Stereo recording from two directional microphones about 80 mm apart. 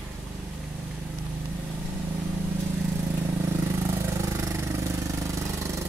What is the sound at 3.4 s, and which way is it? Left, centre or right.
Vehicle, right.